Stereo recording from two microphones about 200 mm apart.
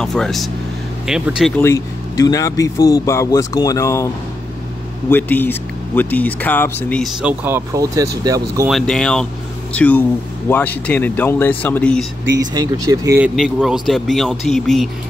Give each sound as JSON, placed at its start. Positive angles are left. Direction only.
{"t": 0.0, "sound": "speech", "side_deg": 0}
{"t": 1.6, "sound": "speech", "side_deg": 15}
{"t": 5.1, "sound": "speech", "side_deg": 10}
{"t": 7.2, "sound": "speech", "side_deg": -10}
{"t": 8.6, "sound": "speech", "side_deg": 0}
{"t": 12.5, "sound": "speech", "side_deg": -15}